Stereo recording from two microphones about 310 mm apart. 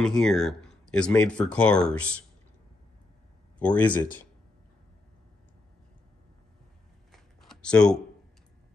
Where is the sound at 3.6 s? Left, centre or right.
Centre.